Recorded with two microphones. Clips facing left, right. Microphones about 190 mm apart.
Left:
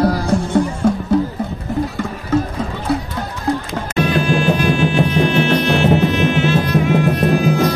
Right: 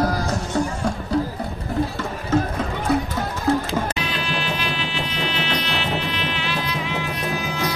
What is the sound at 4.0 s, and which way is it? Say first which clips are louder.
Music: left 11 dB; 50° left (ahead or behind).